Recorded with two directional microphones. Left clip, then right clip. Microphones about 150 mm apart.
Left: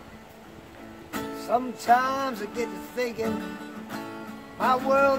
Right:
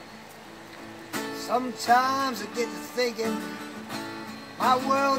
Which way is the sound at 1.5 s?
40° left (ahead or behind).